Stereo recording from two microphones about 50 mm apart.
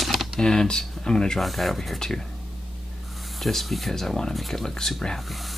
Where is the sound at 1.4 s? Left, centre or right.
Centre.